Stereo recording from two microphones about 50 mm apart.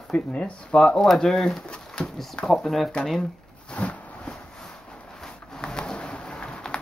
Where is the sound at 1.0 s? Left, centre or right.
Centre.